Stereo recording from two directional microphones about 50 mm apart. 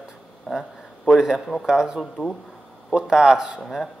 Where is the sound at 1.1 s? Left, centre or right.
Centre.